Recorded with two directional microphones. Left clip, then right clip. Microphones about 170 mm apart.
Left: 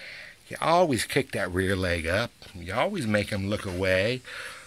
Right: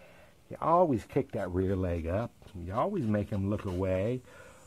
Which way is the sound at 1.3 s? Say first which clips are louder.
Left 5 dB; 25° left (ahead or behind).